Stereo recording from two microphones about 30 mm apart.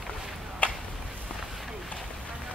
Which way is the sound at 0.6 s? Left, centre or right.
Left.